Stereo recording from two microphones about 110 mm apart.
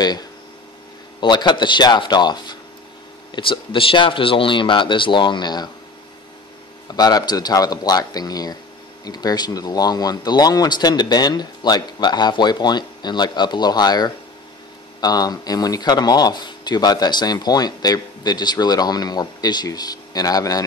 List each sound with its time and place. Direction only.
1.2 s speech: 40° left (ahead or behind)
7.0 s speech: 35° left (ahead or behind)